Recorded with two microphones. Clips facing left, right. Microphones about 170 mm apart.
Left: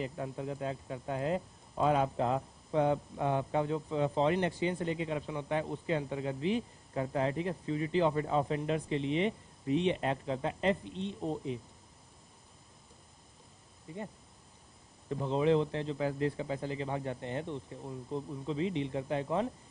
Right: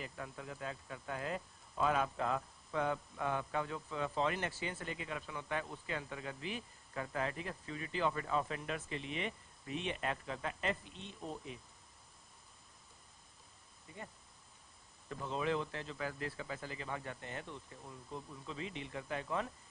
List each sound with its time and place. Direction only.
0.0 s a man's voice: 25° left (ahead or behind)
15.0 s a man's voice: 25° left (ahead or behind)